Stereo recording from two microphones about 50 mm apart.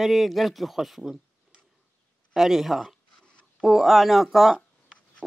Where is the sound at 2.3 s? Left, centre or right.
Centre.